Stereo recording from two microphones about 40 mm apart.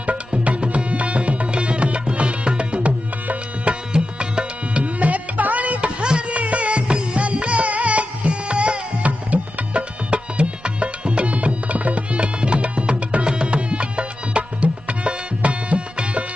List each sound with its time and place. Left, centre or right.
0.0 s music: right